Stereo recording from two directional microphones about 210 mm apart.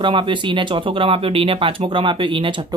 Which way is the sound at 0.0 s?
25° right (ahead or behind).